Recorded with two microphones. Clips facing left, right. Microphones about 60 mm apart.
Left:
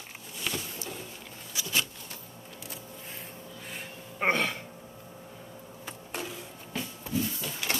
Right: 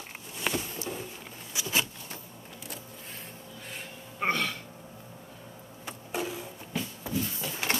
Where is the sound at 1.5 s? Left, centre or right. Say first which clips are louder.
Right 1 dB; centre.